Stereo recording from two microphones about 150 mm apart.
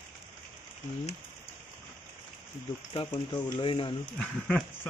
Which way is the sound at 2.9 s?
30° left (ahead or behind).